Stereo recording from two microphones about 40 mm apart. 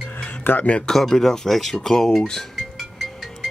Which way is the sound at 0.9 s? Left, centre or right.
Centre.